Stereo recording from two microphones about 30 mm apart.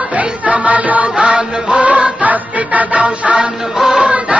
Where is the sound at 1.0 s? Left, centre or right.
Right.